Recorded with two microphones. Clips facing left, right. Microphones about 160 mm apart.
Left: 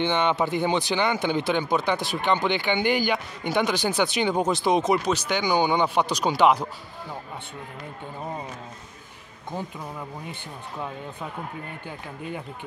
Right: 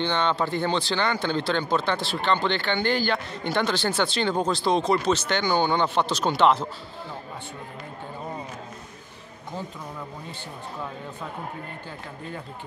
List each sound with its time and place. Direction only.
0.0 s speech: 15° left (ahead or behind)